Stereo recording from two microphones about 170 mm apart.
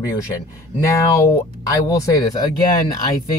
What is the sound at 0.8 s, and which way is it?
Speech, 20° left (ahead or behind).